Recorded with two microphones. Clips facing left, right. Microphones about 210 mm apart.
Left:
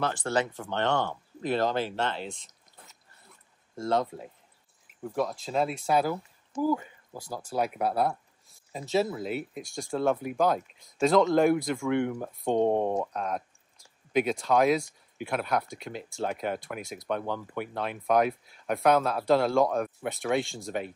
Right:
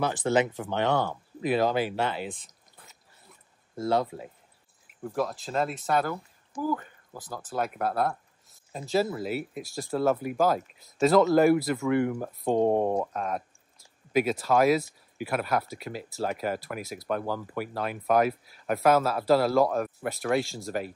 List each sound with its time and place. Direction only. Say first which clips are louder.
0.2 s speech: right 7 dB; 20° right (ahead or behind)
0.6 s speech: right 2 dB; 5° right (ahead or behind)
3.7 s speech: right 1 dB; 5° right (ahead or behind)
7.2 s speech: left 1 dB; centre (ahead or behind)